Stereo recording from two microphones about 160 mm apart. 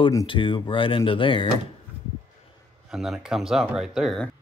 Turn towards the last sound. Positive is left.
turn(degrees=0)  # may be behind; listen again after turning